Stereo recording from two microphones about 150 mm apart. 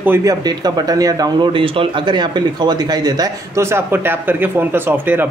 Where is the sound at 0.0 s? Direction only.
20° right (ahead or behind).